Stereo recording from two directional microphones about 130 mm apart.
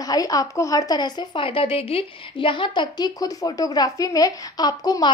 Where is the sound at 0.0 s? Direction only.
30° left (ahead or behind).